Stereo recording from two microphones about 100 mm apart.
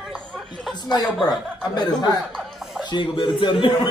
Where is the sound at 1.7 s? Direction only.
40° left (ahead or behind).